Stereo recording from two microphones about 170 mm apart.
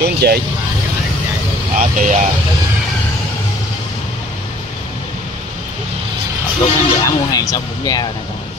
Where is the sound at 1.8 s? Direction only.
50° right (ahead or behind).